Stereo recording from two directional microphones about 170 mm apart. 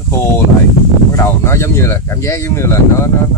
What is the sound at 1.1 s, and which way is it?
Speech, 15° left (ahead or behind).